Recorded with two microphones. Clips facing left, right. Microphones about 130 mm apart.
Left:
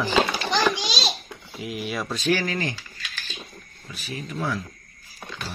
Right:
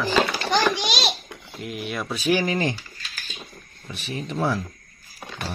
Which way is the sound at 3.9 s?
25° right (ahead or behind).